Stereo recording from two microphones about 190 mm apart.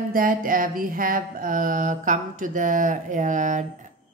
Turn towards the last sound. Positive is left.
turn(degrees=-40)  # may be behind; listen again after turning